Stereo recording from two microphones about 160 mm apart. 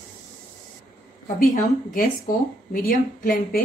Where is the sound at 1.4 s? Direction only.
60° left (ahead or behind).